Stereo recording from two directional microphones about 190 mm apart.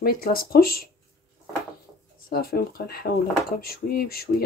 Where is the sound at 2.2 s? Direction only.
55° left (ahead or behind).